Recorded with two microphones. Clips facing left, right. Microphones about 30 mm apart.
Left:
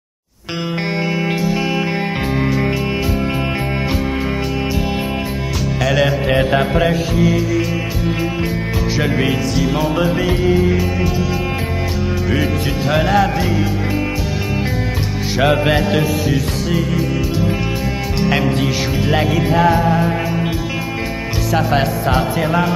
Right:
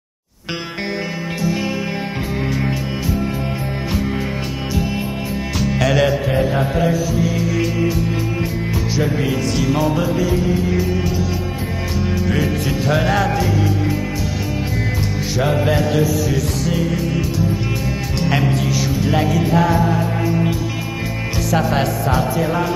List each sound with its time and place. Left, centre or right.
5.8 s music: centre
6.3 s music: left
9.6 s music: centre
9.8 s music: left
10.7 s music: centre
12.6 s music: centre
15.4 s music: left
15.7 s music: left
16.3 s music: left
18.5 s music: left
21.5 s music: centre
22.0 s music: left